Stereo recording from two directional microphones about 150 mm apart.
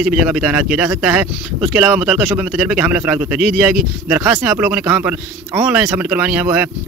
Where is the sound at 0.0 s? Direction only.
5° right (ahead or behind).